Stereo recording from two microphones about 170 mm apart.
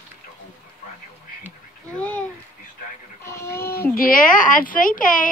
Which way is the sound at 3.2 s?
15° left (ahead or behind).